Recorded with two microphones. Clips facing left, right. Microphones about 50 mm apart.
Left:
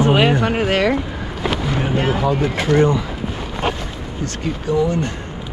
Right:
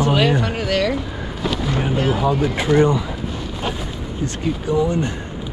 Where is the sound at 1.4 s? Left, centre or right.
Left.